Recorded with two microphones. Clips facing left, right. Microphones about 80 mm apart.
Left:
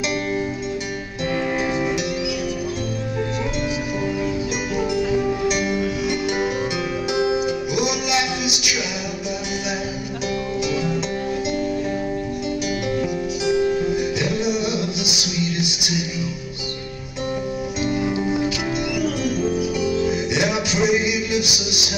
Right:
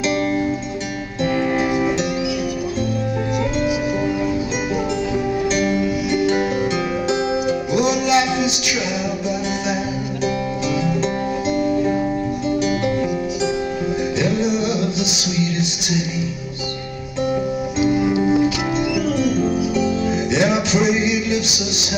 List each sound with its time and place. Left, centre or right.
7.1 s music: right
20.0 s music: right